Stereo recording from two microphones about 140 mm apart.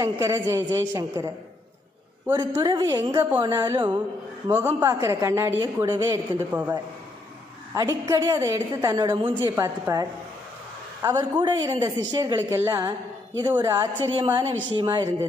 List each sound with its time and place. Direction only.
0.0 s a woman's voice: 25° right (ahead or behind)
2.6 s a woman's voice: 30° right (ahead or behind)
3.0 s a woman's voice: 20° right (ahead or behind)
4.5 s a woman's voice: 15° right (ahead or behind); by 15.0 s 30° right (ahead or behind)